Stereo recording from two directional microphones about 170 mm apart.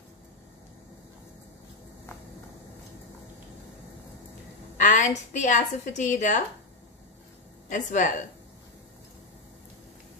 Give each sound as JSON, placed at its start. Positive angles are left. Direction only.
{"t": 4.7, "sound": "a woman's voice", "side_deg": 50}
{"t": 7.7, "sound": "a woman's voice", "side_deg": 45}